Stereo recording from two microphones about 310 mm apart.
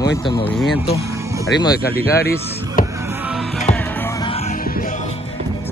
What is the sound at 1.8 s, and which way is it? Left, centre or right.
Speech, left.